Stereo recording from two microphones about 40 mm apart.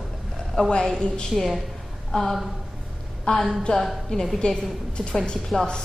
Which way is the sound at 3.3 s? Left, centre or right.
Left.